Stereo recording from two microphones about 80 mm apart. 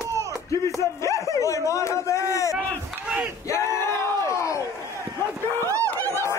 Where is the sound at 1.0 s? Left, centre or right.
Left.